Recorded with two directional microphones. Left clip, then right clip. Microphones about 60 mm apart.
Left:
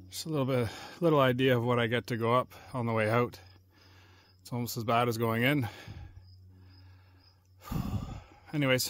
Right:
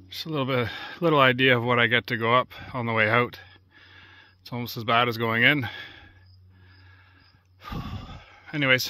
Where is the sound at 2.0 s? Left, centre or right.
Centre.